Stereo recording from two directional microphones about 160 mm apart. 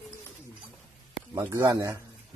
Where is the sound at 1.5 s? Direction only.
20° right (ahead or behind).